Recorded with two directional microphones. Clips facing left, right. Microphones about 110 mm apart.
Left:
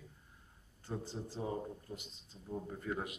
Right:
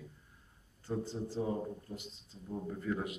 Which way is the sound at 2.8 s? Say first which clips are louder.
Right 4 dB; 20° left (ahead or behind).